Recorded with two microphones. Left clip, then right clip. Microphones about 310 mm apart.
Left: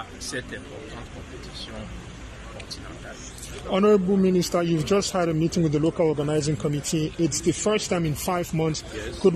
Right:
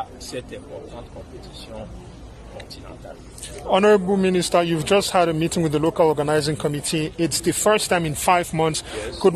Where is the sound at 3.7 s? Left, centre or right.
Right.